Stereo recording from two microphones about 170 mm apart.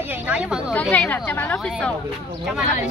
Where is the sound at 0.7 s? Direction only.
10° left (ahead or behind).